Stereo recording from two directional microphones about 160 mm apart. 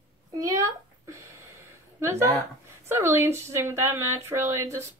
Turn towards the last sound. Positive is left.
turn(degrees=-15)  # may be behind; listen again after turning